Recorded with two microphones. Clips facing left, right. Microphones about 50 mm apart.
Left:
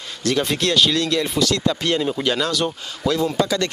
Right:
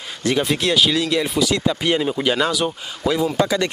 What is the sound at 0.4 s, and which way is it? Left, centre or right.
Speech, centre.